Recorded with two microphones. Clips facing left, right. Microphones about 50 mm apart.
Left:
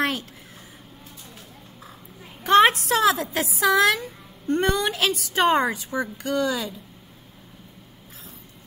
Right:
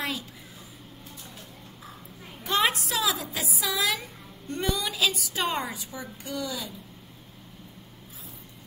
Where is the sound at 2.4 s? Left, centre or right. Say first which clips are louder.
Left 9 dB; left.